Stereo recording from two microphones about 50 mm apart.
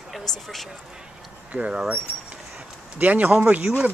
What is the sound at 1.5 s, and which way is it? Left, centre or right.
Speech, centre.